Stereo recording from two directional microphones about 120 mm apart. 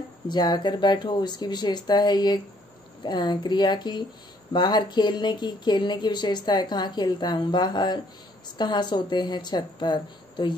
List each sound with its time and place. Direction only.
0.3 s speech: 35° left (ahead or behind)